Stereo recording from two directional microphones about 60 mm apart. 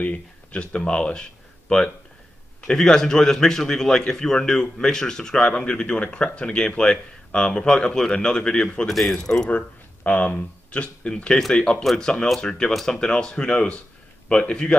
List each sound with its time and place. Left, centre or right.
0.0 s a man's voice: left
9.5 s a man's voice: left
11.8 s speech: centre
12.4 s a man's voice: centre